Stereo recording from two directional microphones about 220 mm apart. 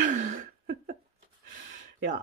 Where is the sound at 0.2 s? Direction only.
35° right (ahead or behind).